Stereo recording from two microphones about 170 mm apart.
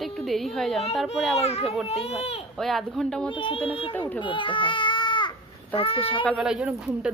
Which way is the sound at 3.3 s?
30° left (ahead or behind).